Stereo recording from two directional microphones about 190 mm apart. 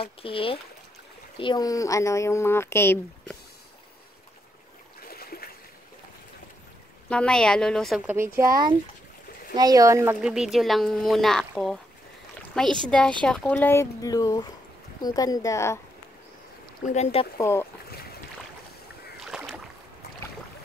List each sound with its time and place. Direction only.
0.0 s a woman's voice: 30° left (ahead or behind); by 3.3 s 10° left (ahead or behind)
5.0 s a sound: 55° left (ahead or behind)
7.1 s speech: 5° left (ahead or behind)
8.1 s speech: 15° right (ahead or behind)
9.6 s speech: 20° right (ahead or behind)
10.2 s a woman's voice: 5° right (ahead or behind); by 15.8 s 15° left (ahead or behind)
16.9 s speech: 35° left (ahead or behind)
17.4 s speech: 15° left (ahead or behind)
19.1 s rowboat: 5° right (ahead or behind)